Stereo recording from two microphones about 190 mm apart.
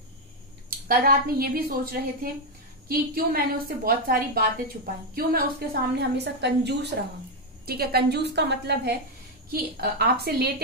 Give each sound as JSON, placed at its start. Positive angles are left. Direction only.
{"t": 0.7, "sound": "a woman's voice", "side_deg": -50}